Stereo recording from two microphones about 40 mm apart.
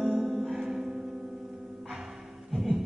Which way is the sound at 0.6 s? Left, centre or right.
Centre.